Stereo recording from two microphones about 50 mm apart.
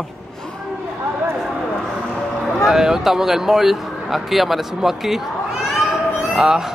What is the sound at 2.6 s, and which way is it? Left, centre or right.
Speech, centre.